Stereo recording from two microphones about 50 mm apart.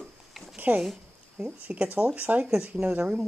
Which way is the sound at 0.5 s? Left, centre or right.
Right.